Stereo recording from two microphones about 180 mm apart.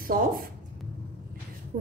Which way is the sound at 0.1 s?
55° right (ahead or behind).